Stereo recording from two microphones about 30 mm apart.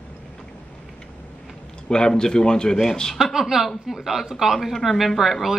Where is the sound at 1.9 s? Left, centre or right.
Left.